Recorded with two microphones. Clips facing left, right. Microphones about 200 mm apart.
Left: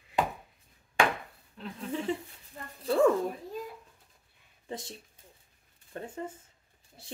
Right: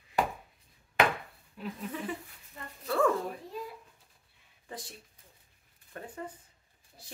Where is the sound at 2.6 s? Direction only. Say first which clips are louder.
Left 1 dB; 40° left (ahead or behind).